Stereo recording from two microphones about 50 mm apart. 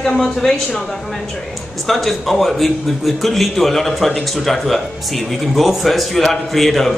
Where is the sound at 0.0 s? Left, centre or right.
Centre.